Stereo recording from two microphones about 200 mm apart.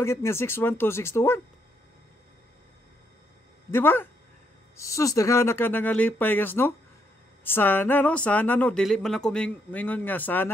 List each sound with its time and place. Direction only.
0.0 s speech: 10° left (ahead or behind)
3.7 s speech: 10° left (ahead or behind)